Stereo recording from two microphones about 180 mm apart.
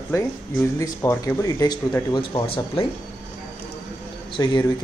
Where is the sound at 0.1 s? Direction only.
15° left (ahead or behind).